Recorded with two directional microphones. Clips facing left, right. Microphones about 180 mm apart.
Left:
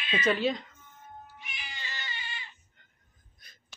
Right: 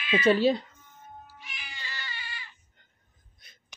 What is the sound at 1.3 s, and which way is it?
Cat, 20° left (ahead or behind).